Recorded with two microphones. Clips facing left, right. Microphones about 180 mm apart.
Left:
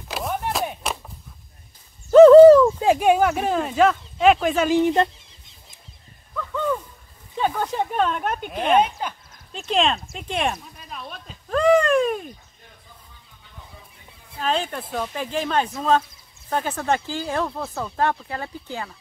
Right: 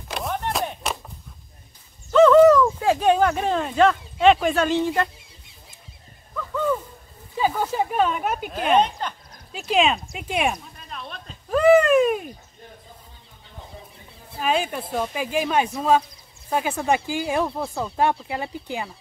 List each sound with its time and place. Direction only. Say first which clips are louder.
0.1 s a sound: even; 5° left (ahead or behind)
2.0 s bird: left 6 dB; 40° left (ahead or behind)
2.8 s speech: left 1 dB; 15° left (ahead or behind)
6.3 s a sound: right 1 dB; 5° right (ahead or behind)
7.3 s speech: right 1 dB; 5° right (ahead or behind)
8.7 s speech: even; 10° left (ahead or behind)
9.5 s speech: right 1 dB; 5° right (ahead or behind)
11.4 s a sound: right 2 dB; 5° right (ahead or behind)
14.4 s speech: right 1 dB; 10° right (ahead or behind)